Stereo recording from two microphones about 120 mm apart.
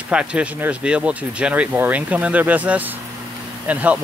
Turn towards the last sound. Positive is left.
turn(degrees=-10)  # may be behind; listen again after turning